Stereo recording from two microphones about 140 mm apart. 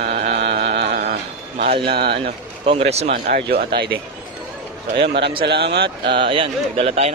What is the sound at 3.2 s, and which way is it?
Speech, 90° right.